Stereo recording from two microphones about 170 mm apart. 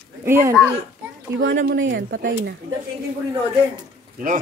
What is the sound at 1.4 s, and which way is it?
Speech, 90° right.